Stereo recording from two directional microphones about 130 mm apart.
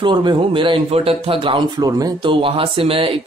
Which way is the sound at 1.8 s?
30° right (ahead or behind).